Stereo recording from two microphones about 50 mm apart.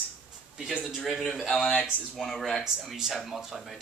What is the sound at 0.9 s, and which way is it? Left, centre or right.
Speech, centre.